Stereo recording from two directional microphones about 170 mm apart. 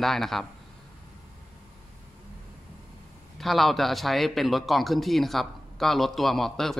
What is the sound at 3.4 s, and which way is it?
A man's voice, centre (ahead or behind).